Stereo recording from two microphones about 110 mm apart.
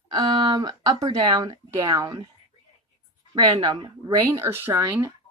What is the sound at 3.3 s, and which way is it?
Speech, 45° right (ahead or behind).